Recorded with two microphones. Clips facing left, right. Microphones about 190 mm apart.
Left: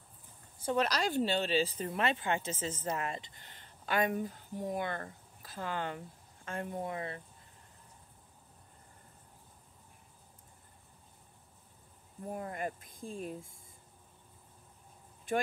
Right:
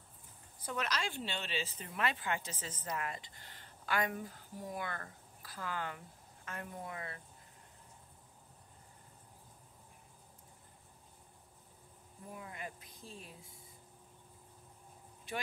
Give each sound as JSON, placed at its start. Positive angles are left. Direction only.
{"t": 0.6, "sound": "speech", "side_deg": 30}
{"t": 2.0, "sound": "speech", "side_deg": 25}
{"t": 12.3, "sound": "speech", "side_deg": 50}
{"t": 15.3, "sound": "speech", "side_deg": 50}